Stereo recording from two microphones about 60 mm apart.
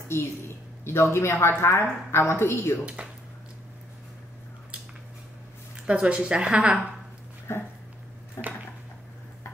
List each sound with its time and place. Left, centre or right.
0.8 s a woman's voice: left
2.8 s speech: right
5.9 s a woman's voice: centre
7.5 s a woman's voice: left